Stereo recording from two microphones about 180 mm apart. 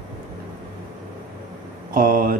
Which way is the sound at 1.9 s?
50° right (ahead or behind).